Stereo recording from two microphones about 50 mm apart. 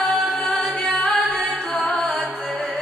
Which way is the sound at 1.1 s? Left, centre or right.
Centre.